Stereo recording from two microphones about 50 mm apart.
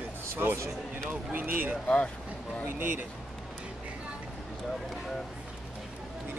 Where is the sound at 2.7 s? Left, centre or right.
Right.